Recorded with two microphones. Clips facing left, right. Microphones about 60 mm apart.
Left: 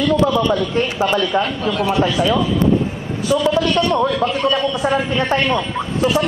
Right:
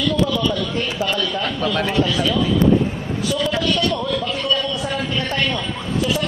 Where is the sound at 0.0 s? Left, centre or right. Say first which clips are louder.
Left 4 dB; left.